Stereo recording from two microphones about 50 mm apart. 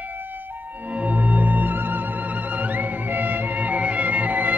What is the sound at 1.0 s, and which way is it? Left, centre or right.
Music, right.